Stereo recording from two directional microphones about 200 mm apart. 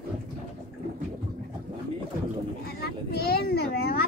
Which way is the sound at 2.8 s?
50° left (ahead or behind).